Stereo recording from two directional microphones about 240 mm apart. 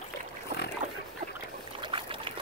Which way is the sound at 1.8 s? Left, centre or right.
Right.